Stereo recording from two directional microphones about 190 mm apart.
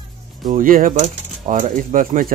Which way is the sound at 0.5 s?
45° right (ahead or behind).